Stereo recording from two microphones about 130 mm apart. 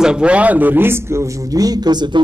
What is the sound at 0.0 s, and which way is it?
Speech, 5° right (ahead or behind).